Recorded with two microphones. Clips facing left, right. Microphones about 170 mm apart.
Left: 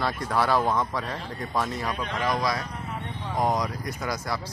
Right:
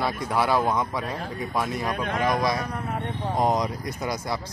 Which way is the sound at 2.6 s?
50° right (ahead or behind).